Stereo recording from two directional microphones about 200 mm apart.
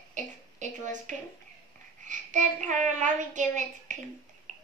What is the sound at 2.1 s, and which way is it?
A child's voice, 40° right (ahead or behind).